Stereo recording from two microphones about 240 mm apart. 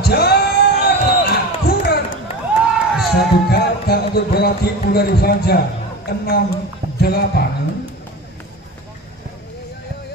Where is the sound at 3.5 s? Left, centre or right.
Left.